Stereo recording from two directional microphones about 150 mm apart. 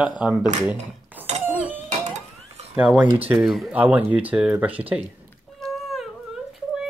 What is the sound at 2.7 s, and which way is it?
Speech, 10° right (ahead or behind).